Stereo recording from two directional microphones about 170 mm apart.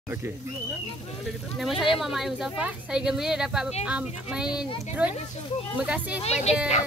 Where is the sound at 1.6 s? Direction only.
Centre (ahead or behind).